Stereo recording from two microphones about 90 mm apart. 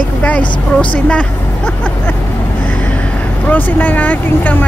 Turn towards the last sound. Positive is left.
turn(degrees=20)  # may be behind; listen again after turning